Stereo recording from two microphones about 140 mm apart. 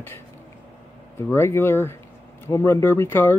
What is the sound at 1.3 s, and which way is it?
Speech, 15° left (ahead or behind).